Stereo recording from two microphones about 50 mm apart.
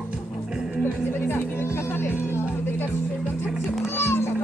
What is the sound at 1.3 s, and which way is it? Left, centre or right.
A child's voice, left.